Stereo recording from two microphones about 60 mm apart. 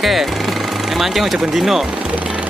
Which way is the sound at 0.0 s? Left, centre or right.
Centre.